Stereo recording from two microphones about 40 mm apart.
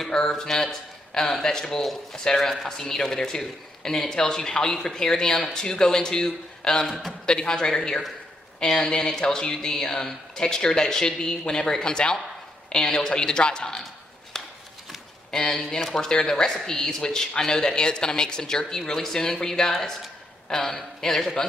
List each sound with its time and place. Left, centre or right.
0.1 s a woman's voice: centre
14.3 s a sound: centre
15.3 s a woman's voice: centre